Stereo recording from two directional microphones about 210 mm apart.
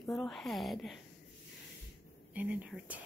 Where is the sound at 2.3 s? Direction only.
5° right (ahead or behind).